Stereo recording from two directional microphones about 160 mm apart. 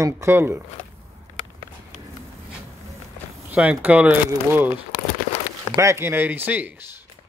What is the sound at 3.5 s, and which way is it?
Speech, 10° right (ahead or behind).